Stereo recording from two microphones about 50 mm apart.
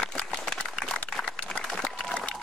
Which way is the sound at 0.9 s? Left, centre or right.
Centre.